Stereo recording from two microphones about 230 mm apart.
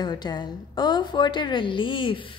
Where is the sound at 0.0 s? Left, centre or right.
Centre.